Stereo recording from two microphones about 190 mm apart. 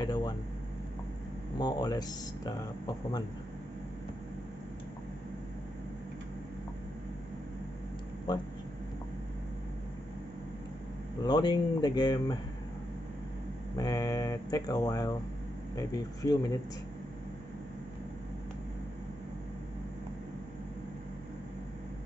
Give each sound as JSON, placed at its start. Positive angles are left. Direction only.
{"t": 0.0, "sound": "a sound", "side_deg": 20}
{"t": 1.6, "sound": "speech", "side_deg": 20}
{"t": 11.2, "sound": "speech", "side_deg": 20}
{"t": 13.7, "sound": "speech", "side_deg": 20}